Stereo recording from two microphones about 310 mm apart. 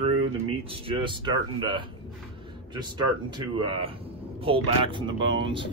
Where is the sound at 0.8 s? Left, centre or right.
Centre.